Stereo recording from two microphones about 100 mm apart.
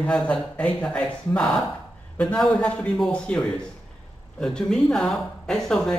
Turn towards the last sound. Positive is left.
turn(degrees=5)  # may be behind; listen again after turning